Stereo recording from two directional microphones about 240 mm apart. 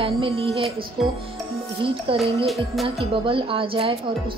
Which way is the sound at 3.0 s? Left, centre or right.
Right.